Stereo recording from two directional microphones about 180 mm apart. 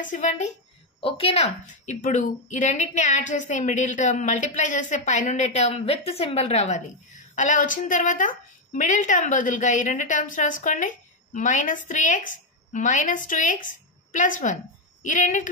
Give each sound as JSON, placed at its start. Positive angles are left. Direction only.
{"t": 0.0, "sound": "a woman's voice", "side_deg": 45}
{"t": 1.0, "sound": "a woman's voice", "side_deg": 30}